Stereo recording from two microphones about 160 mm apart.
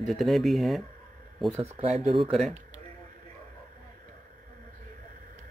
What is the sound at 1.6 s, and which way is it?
Speech, 45° right (ahead or behind).